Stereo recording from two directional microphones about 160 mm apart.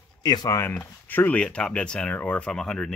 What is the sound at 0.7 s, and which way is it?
Speech, 10° left (ahead or behind).